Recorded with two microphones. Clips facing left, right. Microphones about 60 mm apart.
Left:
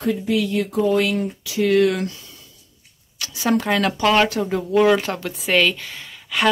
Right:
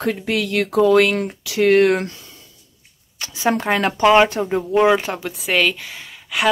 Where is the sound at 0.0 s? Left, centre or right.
Right.